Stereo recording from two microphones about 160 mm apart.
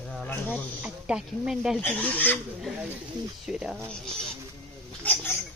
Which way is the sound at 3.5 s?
5° right (ahead or behind).